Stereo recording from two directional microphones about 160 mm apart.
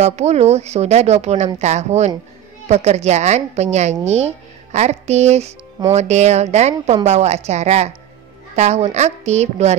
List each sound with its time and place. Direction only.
0.0 s speech: 45° right (ahead or behind)